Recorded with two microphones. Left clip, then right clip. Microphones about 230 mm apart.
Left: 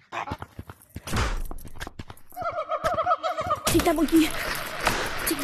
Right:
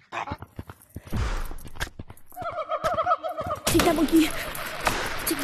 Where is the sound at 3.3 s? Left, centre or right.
Left.